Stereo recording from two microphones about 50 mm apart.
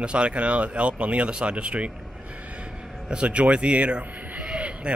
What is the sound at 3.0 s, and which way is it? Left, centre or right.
Speech, right.